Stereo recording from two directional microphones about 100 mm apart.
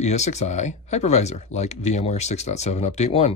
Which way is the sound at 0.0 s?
90° left.